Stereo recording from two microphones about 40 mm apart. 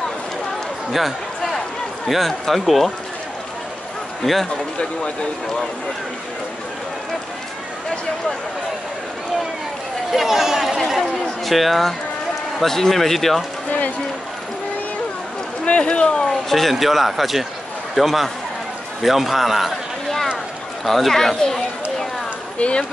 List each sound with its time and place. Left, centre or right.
0.9 s a sound: centre
2.0 s speech: centre
4.2 s a man's voice: centre
10.1 s speech: centre
15.6 s speech: left
16.4 s speech: centre
20.8 s speech: centre
22.6 s speech: left